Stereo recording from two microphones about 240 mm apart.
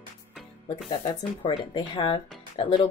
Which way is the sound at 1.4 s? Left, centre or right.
Left.